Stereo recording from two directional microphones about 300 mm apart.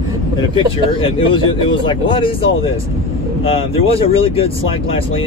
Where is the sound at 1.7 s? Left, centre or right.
Centre.